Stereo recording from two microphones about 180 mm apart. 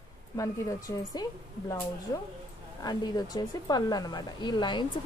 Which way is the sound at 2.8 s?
20° left (ahead or behind).